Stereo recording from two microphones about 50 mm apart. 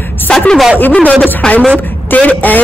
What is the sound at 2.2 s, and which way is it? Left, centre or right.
Speech, left.